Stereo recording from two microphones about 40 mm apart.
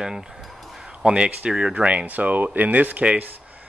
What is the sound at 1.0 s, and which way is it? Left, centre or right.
Speech, right.